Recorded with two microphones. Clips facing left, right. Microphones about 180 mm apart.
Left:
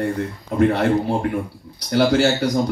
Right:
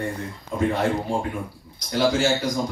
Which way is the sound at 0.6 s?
65° left (ahead or behind).